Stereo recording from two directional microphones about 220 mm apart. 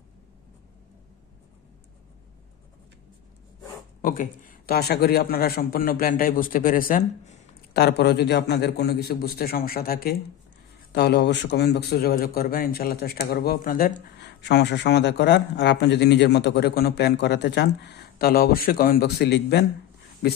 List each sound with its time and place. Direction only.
4.0 s a man's voice: 40° left (ahead or behind)
7.7 s a man's voice: 45° left (ahead or behind)